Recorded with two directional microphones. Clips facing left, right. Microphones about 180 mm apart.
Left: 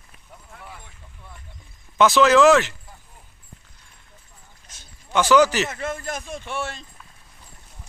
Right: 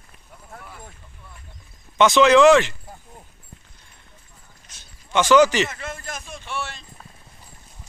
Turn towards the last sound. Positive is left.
turn(degrees=50)  # may be behind; listen again after turning